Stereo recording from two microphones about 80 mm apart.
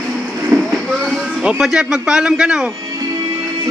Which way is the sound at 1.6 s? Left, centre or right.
Centre.